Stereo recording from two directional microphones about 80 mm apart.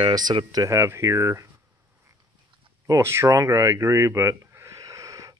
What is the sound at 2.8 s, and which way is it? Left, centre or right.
Speech, right.